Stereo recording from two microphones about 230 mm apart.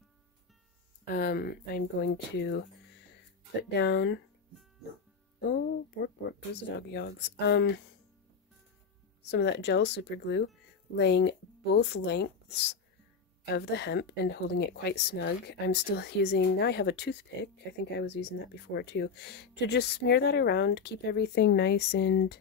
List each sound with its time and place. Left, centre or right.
1.1 s speech: left
3.7 s speech: left
5.5 s speech: left
9.2 s speech: left
13.6 s speech: left